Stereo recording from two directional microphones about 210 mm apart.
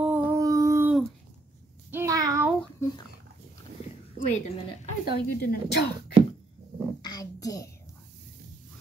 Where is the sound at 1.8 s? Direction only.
15° right (ahead or behind).